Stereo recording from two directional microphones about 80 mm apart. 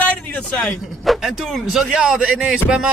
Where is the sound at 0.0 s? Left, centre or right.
Centre.